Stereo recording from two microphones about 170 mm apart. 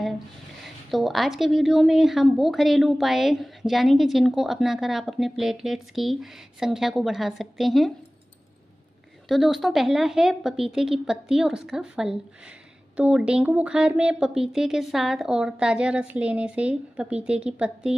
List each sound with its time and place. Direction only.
0.8 s speech: centre (ahead or behind)
9.3 s speech: centre (ahead or behind)